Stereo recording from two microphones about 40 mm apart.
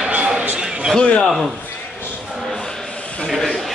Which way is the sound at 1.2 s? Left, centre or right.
Centre.